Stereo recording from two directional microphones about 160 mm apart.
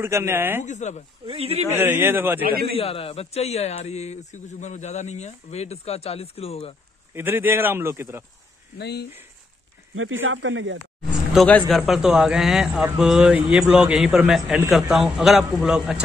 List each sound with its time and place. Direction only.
0.0 s speech: 15° right (ahead or behind)
0.6 s speech: 45° left (ahead or behind)
1.2 s speech: 35° right (ahead or behind)
1.7 s speech: 10° right (ahead or behind)
2.4 s a man's voice: 70° right (ahead or behind)
2.7 s a man's voice: 35° left (ahead or behind)
7.2 s speech: 15° right (ahead or behind)
8.7 s speech: 90° left
11.3 s a man's voice: 5° left (ahead or behind)